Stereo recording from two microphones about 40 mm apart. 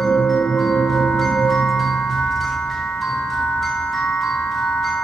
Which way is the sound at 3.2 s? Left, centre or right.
Centre.